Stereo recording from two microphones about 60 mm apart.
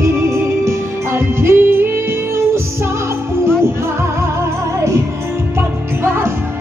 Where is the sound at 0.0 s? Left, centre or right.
Right.